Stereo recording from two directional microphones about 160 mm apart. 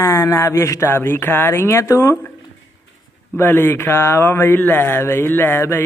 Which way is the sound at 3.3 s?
15° left (ahead or behind).